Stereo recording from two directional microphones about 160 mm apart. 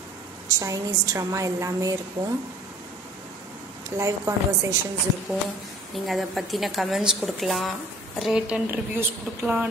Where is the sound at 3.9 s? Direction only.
20° right (ahead or behind).